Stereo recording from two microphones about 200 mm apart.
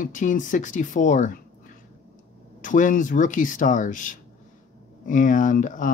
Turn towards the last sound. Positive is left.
turn(degrees=40)  # may be behind; listen again after turning